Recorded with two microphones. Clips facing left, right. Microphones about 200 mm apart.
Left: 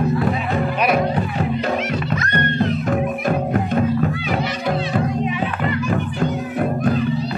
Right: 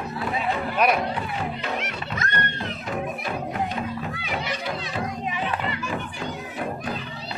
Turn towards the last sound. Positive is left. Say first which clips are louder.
# left 10 dB
turn(degrees=50)  # may be behind; listen again after turning